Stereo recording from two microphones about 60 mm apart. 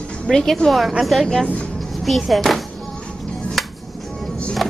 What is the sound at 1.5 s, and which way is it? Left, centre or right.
Music, centre.